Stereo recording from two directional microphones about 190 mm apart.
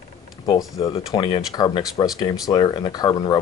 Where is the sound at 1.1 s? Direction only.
20° left (ahead or behind).